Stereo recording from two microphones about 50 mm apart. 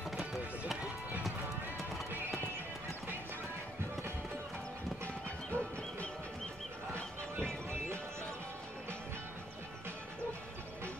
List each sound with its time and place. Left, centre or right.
5.0 s music: left